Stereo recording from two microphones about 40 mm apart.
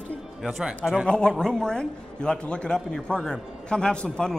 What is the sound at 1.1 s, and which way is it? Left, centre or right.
A man's voice, left.